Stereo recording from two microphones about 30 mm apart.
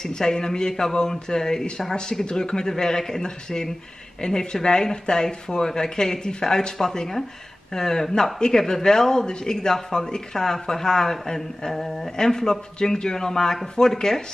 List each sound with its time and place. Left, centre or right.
0.0 s speech: left